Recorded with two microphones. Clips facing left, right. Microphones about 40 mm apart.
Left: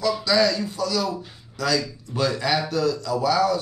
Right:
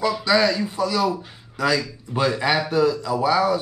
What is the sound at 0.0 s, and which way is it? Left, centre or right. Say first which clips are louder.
Speech: right 1 dB; right.